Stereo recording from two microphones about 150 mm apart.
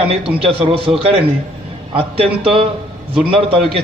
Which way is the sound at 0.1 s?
40° right (ahead or behind).